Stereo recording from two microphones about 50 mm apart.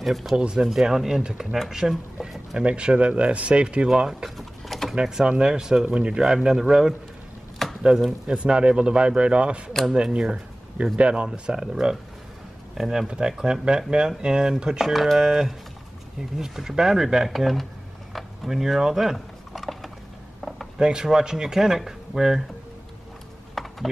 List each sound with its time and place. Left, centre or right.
0.0 s speech: centre
0.4 s a man's voice: centre
0.7 s speech: centre
4.9 s speech: centre
7.6 s a sound: centre
8.3 s a man's voice: centre
14.9 s speech: centre
18.1 s a sound: centre
20.7 s speech: centre
23.5 s a sound: centre